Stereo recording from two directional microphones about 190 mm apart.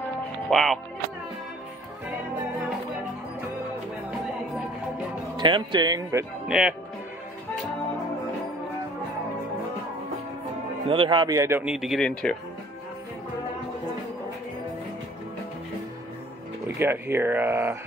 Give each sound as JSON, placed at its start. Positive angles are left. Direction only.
{"t": 0.5, "sound": "music", "side_deg": 0}
{"t": 5.4, "sound": "speech", "side_deg": -25}
{"t": 6.4, "sound": "speech", "side_deg": -5}
{"t": 10.9, "sound": "speech", "side_deg": -25}
{"t": 16.6, "sound": "speech", "side_deg": -10}